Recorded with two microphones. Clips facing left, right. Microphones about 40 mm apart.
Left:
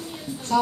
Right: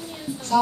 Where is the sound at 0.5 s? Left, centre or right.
Centre.